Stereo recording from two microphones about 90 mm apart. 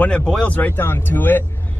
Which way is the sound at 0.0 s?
15° left (ahead or behind).